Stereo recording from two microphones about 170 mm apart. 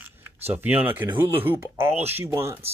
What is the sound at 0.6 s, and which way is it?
Speech, 10° right (ahead or behind).